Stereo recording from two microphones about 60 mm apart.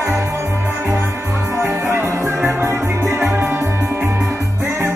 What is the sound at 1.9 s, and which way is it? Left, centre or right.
Music, right.